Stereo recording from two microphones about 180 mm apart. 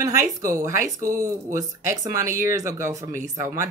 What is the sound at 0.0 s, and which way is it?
Speech, 15° right (ahead or behind).